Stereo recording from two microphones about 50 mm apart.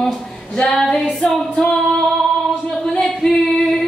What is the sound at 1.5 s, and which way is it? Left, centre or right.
Music, centre.